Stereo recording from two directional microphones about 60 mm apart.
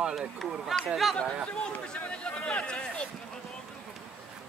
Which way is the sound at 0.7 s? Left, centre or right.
Centre.